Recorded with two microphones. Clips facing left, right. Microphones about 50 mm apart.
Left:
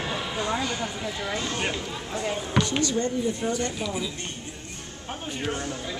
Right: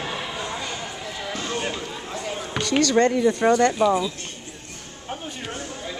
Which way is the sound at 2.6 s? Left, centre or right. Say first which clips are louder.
Right 7 dB; right.